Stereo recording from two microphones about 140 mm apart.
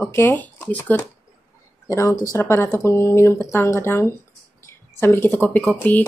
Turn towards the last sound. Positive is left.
turn(degrees=10)  # may be behind; listen again after turning